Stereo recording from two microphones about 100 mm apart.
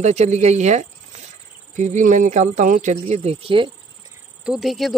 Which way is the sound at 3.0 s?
90° right.